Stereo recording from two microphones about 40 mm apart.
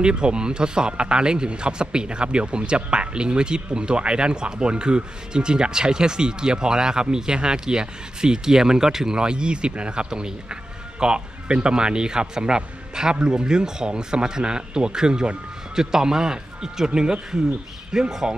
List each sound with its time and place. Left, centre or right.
0.0 s speech: right